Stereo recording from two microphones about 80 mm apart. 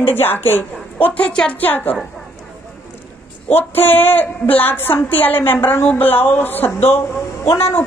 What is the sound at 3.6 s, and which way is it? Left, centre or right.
A woman's voice, left.